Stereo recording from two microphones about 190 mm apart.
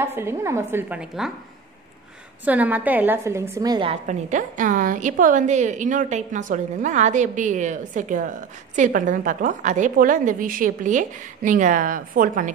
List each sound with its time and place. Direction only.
0.0 s a woman's voice: 15° right (ahead or behind)
2.4 s a woman's voice: 10° right (ahead or behind)
3.9 s a woman's voice: 40° right (ahead or behind)